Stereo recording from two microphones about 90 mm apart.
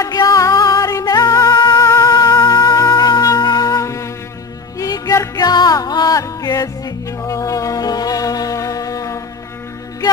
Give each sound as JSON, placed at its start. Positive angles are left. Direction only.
{"t": 0.0, "sound": "music", "side_deg": 40}
{"t": 3.0, "sound": "music", "side_deg": 50}
{"t": 4.7, "sound": "music", "side_deg": 45}